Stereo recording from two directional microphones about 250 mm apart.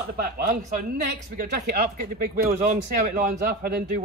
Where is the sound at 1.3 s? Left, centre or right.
Right.